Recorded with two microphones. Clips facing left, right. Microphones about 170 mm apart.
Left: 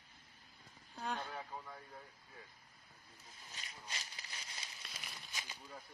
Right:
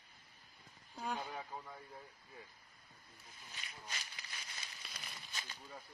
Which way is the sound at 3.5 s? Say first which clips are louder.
Even; 30° left (ahead or behind).